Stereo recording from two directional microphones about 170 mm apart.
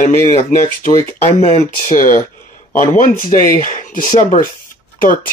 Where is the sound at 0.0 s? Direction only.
50° left (ahead or behind).